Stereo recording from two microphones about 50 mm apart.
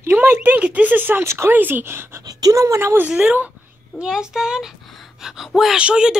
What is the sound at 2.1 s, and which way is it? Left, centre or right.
Speech, right.